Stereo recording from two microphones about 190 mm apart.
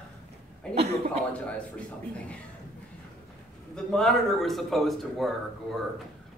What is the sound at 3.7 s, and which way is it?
A woman's voice, 5° left (ahead or behind).